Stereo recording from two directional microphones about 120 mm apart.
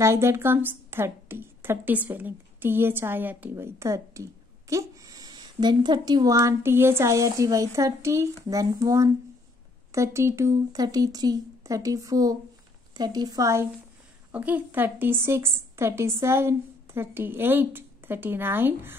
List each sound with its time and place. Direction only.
0.0 s a woman's voice: 20° right (ahead or behind)
14.3 s a woman's voice: 15° right (ahead or behind)